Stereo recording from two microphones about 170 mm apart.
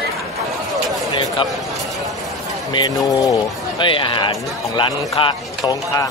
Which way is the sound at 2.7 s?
25° left (ahead or behind).